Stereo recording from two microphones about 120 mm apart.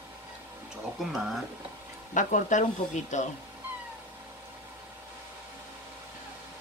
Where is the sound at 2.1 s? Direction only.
90° left.